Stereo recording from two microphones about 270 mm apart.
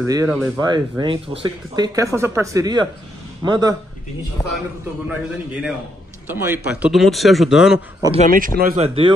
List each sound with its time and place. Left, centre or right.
0.0 s speech: centre
5.0 s speech: centre
8.3 s speech: right